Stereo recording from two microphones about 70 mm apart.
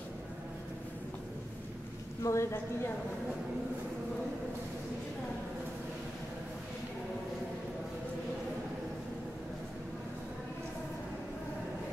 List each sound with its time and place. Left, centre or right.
2.2 s a woman's voice: left